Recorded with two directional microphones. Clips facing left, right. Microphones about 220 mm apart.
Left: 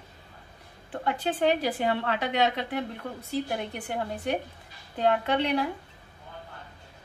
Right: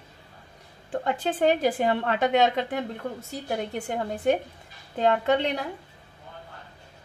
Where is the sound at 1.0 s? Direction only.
45° right (ahead or behind).